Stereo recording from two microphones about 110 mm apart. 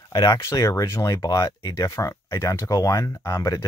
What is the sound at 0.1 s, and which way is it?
Speech, 30° left (ahead or behind).